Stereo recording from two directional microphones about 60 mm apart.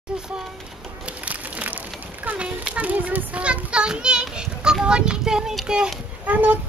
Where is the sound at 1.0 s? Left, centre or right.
Right.